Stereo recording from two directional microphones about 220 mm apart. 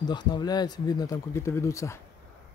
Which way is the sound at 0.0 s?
20° left (ahead or behind).